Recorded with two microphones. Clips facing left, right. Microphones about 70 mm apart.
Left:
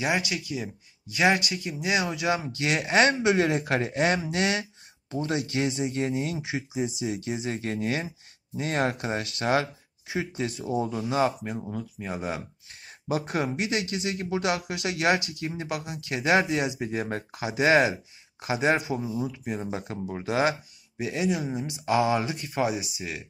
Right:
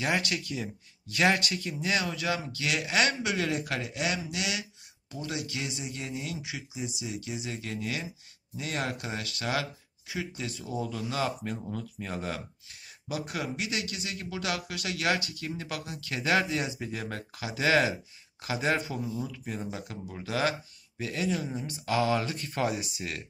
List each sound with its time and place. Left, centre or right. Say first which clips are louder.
0.0 s speech: left 2 dB; centre; by 11.3 s left
11.4 s speech: left 2 dB; centre
12.8 s speech: left 6 dB; left; by 23.2 s centre